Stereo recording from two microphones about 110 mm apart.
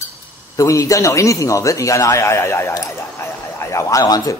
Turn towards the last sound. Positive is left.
turn(degrees=35)  # may be behind; listen again after turning